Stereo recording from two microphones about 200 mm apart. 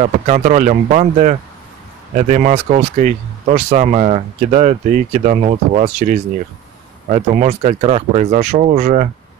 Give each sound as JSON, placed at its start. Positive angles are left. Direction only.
{"t": 0.0, "sound": "speech", "side_deg": -40}